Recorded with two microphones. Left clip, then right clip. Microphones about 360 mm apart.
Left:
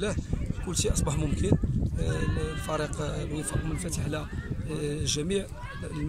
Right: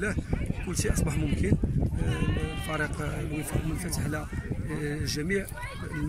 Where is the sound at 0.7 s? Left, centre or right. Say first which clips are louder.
Left 2 dB; centre.